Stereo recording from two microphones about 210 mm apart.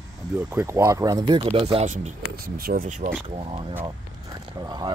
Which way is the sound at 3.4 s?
25° right (ahead or behind).